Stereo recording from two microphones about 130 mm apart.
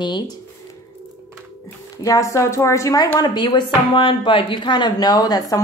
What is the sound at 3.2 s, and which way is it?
Speech, 35° left (ahead or behind).